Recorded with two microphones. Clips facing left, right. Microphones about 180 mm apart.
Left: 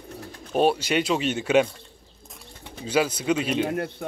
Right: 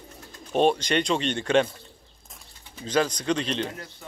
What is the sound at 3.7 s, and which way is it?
Speech, 60° left (ahead or behind).